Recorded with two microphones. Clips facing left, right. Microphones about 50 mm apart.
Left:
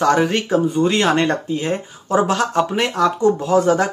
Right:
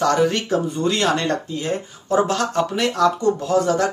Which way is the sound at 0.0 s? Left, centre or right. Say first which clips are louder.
Left 2 dB; left.